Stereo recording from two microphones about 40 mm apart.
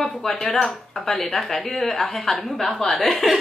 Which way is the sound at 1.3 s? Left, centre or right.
Centre.